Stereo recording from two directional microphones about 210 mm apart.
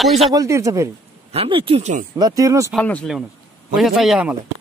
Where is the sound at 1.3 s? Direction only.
25° right (ahead or behind).